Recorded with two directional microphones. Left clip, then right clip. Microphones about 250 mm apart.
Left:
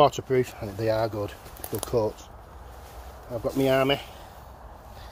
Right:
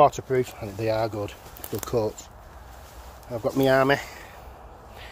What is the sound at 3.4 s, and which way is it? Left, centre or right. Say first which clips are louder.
Speech: right 3 dB; right.